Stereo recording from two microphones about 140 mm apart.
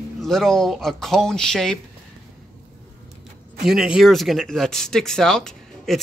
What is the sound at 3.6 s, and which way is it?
Speech, 5° right (ahead or behind).